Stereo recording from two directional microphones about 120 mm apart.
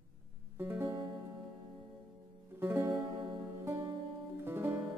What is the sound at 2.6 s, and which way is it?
Music, 20° right (ahead or behind).